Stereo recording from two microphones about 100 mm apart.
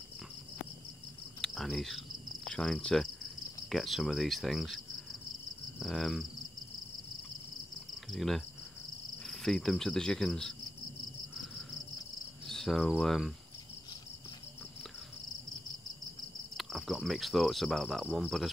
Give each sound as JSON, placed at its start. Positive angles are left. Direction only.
{"t": 1.4, "sound": "cricket", "side_deg": 5}
{"t": 8.1, "sound": "cricket", "side_deg": 0}
{"t": 9.2, "sound": "insect", "side_deg": 0}
{"t": 12.4, "sound": "speech", "side_deg": 5}
{"t": 16.5, "sound": "cricket", "side_deg": 0}